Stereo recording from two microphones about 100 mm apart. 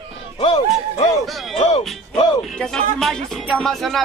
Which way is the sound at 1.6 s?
90° left.